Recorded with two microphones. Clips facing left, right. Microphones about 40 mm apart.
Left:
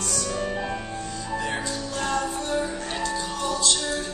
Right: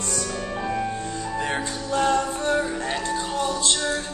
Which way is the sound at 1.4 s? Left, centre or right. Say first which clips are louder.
Right 2 dB; right.